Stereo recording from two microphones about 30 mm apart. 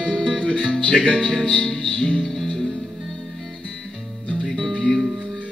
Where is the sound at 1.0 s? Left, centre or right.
Left.